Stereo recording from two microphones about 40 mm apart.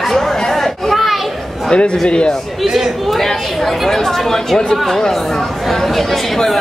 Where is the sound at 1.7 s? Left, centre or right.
Left.